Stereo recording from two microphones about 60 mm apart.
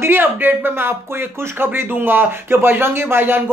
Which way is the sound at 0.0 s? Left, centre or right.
Right.